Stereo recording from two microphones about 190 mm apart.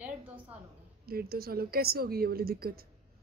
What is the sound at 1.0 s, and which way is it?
A woman's voice, 55° right (ahead or behind).